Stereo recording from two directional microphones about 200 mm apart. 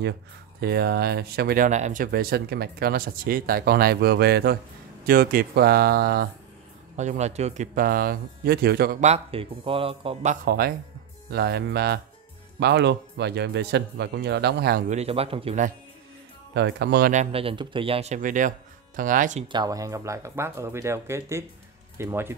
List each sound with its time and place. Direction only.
0.6 s speech: 50° right (ahead or behind)
7.0 s speech: 35° right (ahead or behind); by 8.9 s 50° right (ahead or behind)
9.0 s speech: 30° right (ahead or behind)
10.4 s speech: 50° right (ahead or behind)
14.9 s speech: 30° right (ahead or behind)
16.5 s speech: 60° right (ahead or behind)
17.1 s speech: 30° right (ahead or behind)
19.4 s speech: 20° right (ahead or behind)